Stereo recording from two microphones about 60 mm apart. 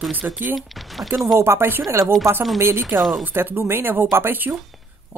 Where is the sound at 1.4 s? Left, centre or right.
Right.